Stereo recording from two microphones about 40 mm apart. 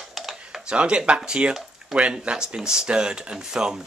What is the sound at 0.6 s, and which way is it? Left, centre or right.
Speech, right.